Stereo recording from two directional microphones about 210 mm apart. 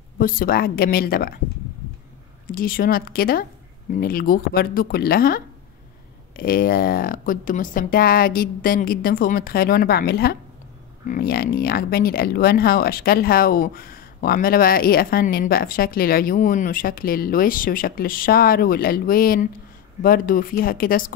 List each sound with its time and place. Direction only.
0.2 s speech: 45° left (ahead or behind)
2.4 s speech: 45° left (ahead or behind)